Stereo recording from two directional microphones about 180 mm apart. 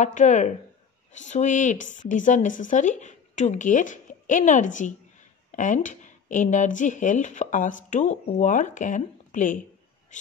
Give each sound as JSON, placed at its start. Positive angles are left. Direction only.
{"t": 0.0, "sound": "speech", "side_deg": 40}